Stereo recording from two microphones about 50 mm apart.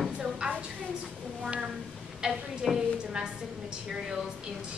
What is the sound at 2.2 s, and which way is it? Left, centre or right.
A woman's voice, centre.